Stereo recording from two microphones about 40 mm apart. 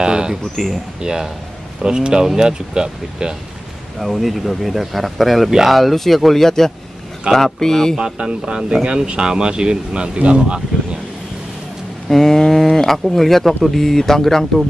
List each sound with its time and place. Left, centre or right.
0.0 s speech: right
4.0 s speech: centre
8.0 s speech: right
12.1 s speech: centre